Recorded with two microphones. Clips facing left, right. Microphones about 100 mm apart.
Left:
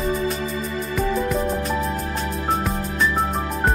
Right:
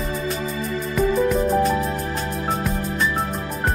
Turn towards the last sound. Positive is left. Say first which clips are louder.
# left 3 dB
turn(degrees=0)  # may be behind; listen again after turning